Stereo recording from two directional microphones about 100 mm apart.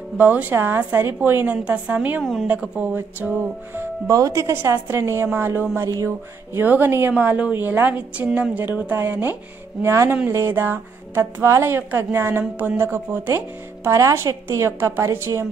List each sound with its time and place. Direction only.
0.2 s a woman's voice: 15° right (ahead or behind)
4.1 s speech: 35° right (ahead or behind)
5.8 s music: 35° right (ahead or behind)
6.0 s speech: 20° right (ahead or behind)